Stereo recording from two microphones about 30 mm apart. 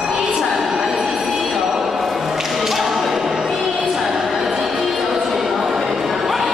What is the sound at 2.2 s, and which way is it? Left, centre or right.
Music, centre.